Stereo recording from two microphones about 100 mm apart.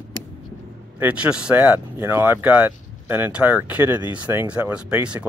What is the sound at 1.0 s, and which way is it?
Speech, 15° right (ahead or behind).